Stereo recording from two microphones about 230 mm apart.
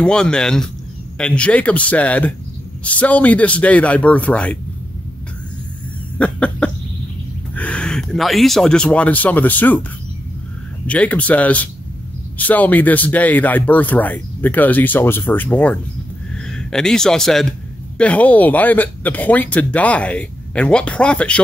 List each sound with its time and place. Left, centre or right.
0.0 s a man's voice: centre
6.1 s a man's voice: centre
10.9 s a man's voice: centre